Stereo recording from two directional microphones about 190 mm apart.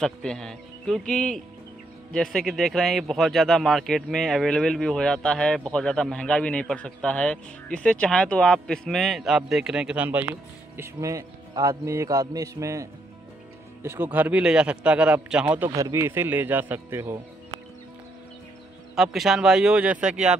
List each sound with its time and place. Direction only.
0.0 s a man's voice: 5° left (ahead or behind); by 12.8 s 15° right (ahead or behind)
13.8 s a man's voice: 10° right (ahead or behind)
18.9 s speech: centre (ahead or behind)